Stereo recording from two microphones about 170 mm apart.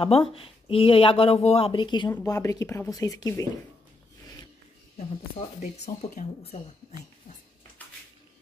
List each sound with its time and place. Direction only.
0.0 s speech: 35° left (ahead or behind)
5.6 s speech: 50° left (ahead or behind)